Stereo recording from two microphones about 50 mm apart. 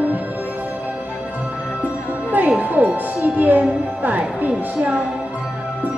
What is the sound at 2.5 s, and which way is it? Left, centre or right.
Music, right.